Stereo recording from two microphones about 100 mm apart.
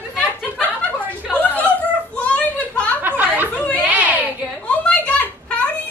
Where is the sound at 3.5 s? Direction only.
10° left (ahead or behind).